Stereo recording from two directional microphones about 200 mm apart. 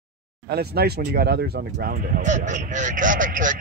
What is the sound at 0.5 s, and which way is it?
Speech, 55° right (ahead or behind).